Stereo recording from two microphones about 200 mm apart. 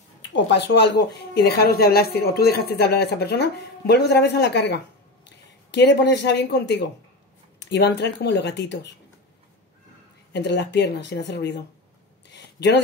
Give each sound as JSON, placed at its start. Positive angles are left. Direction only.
{"t": 0.2, "sound": "speech", "side_deg": 60}
{"t": 10.3, "sound": "speech", "side_deg": 60}
{"t": 12.3, "sound": "a sound", "side_deg": 60}